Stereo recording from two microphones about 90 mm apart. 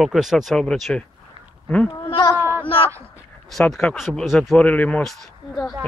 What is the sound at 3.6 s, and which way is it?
Speech, 5° left (ahead or behind).